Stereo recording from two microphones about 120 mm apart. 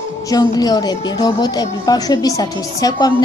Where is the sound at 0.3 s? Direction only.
30° left (ahead or behind).